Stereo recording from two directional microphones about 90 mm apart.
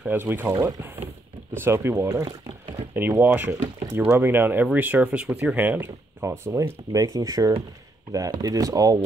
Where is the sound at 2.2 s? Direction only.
50° right (ahead or behind).